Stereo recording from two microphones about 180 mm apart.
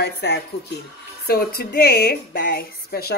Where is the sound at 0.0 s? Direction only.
65° left (ahead or behind).